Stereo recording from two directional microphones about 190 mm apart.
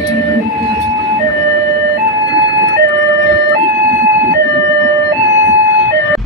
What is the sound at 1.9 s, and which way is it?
Ambulance, 70° right (ahead or behind).